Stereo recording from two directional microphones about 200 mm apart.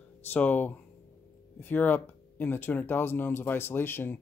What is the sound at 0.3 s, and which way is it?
Speech, 10° left (ahead or behind).